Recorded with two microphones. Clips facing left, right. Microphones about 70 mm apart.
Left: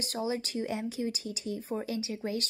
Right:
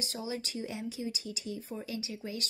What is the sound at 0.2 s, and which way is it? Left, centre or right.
A woman's voice, left.